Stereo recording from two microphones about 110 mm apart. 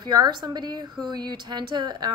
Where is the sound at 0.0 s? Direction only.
40° right (ahead or behind).